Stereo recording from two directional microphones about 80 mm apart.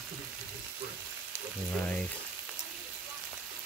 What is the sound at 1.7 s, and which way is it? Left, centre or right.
Frying, centre.